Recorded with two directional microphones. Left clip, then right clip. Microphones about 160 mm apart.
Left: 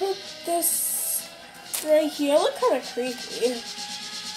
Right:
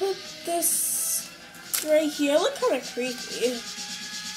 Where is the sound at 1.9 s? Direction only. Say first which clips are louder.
Left 2 dB; 15° right (ahead or behind).